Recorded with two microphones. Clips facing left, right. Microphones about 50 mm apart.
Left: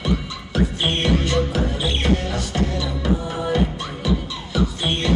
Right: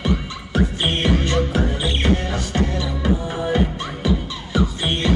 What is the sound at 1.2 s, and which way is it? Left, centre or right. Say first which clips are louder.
Music: right 1 dB; right.